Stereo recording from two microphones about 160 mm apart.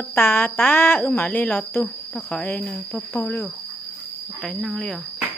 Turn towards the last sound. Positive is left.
turn(degrees=0)  # may be behind; listen again after turning